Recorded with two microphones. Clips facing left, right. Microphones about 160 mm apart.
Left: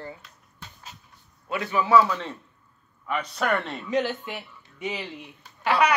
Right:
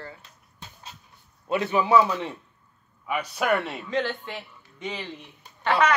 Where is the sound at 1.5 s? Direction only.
20° right (ahead or behind).